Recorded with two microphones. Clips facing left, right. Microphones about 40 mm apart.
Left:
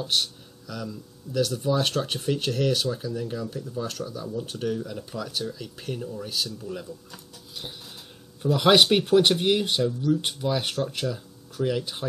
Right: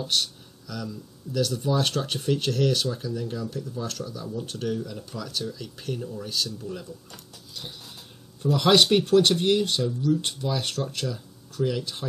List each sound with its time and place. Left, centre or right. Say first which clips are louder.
0.0 s speech: left 1 dB; centre
7.5 s a sound: left 1 dB; centre
8.4 s speech: left 1 dB; centre